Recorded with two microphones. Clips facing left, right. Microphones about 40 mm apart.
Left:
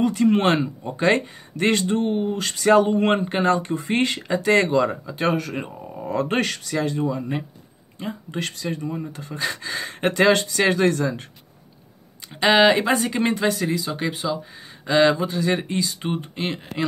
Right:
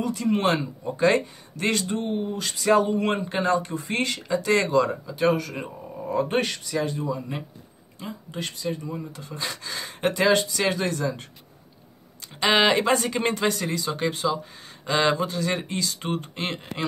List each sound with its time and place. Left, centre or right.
0.0 s speech: left
6.0 s speech: left
7.0 s speech: left
8.4 s speech: left
8.8 s speech: left
10.5 s speech: left
10.8 s speech: left
12.5 s speech: centre